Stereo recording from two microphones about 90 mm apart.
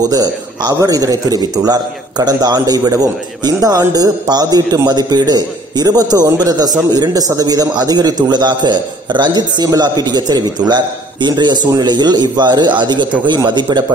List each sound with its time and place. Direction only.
0.1 s a man's voice: 45° right (ahead or behind)